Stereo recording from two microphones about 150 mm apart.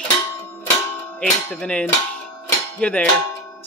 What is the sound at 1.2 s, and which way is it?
Speech, 5° left (ahead or behind).